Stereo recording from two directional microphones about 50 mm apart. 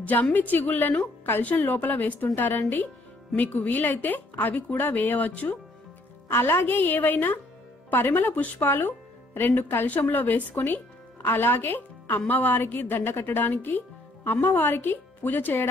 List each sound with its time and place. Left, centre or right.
0.0 s a woman's voice: left
6.3 s speech: left
9.8 s a woman's voice: left
11.2 s a woman's voice: left